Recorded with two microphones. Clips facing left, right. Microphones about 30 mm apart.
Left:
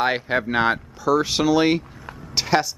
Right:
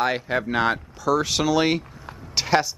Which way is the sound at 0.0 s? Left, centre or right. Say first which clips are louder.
Left 2 dB; centre.